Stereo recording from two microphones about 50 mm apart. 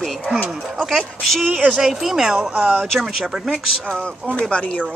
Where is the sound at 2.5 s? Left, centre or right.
Right.